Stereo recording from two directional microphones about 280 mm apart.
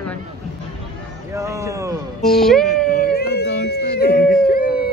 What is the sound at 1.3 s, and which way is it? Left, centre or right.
Speech, centre.